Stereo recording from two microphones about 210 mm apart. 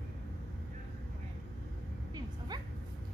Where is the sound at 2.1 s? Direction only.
20° right (ahead or behind).